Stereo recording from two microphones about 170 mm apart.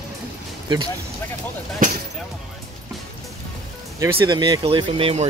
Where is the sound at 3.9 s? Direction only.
20° right (ahead or behind).